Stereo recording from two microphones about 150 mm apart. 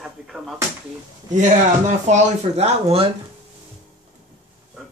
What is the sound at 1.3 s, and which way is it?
Speech, 55° right (ahead or behind).